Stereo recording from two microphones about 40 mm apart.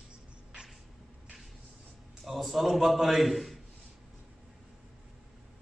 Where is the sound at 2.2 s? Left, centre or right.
Centre.